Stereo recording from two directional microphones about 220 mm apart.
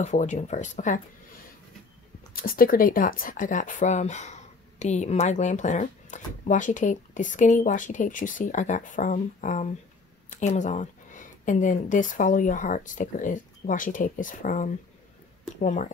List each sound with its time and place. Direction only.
0.0 s speech: 30° left (ahead or behind)
2.3 s speech: 40° left (ahead or behind)